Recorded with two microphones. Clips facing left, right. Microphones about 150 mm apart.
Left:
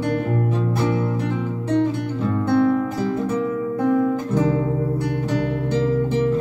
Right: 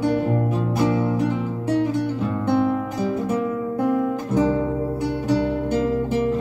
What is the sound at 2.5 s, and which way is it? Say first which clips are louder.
Music: left 2 dB; 15° right (ahead or behind).